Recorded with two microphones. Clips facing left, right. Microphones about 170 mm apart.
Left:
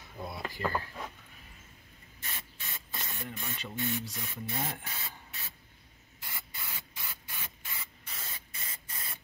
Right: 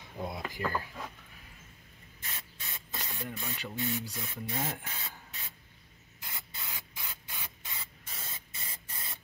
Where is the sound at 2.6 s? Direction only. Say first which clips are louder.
Right 1 dB; 15° right (ahead or behind).